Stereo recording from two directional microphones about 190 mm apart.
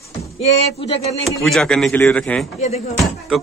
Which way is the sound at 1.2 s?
Centre (ahead or behind).